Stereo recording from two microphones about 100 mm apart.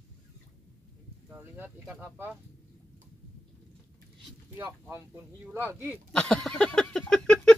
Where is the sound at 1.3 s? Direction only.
20° right (ahead or behind).